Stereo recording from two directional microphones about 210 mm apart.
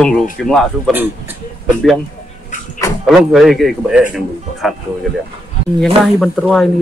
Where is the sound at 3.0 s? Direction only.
Centre (ahead or behind).